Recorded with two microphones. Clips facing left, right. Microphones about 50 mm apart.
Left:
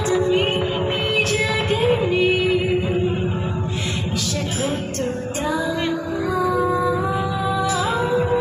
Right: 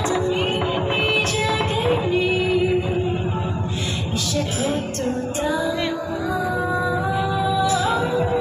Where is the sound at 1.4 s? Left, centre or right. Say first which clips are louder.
Left 1 dB; left.